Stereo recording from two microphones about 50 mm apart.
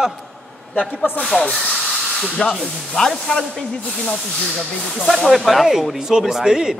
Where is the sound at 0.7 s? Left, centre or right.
Left.